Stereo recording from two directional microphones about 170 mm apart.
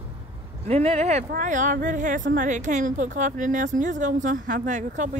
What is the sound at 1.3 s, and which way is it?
A woman's voice, 50° right (ahead or behind).